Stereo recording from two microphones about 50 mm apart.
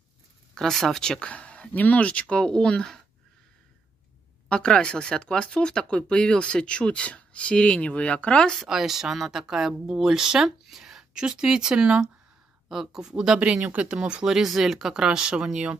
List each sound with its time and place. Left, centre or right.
0.6 s speech: centre
1.2 s speech: left
4.5 s speech: centre
8.5 s speech: centre
13.1 s speech: right